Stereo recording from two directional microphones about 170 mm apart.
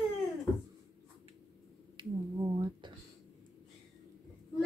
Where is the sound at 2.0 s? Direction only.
30° right (ahead or behind).